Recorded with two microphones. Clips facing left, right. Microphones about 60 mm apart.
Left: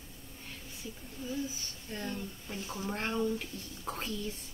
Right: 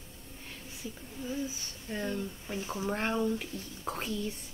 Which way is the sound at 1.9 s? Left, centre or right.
Centre.